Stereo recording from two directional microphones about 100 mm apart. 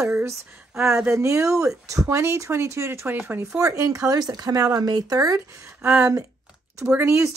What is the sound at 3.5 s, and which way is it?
Speech, 35° right (ahead or behind).